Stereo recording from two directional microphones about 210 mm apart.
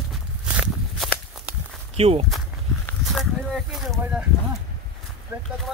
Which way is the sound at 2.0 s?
30° right (ahead or behind).